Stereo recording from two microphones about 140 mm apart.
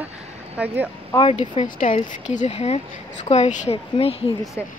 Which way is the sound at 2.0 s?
55° left (ahead or behind).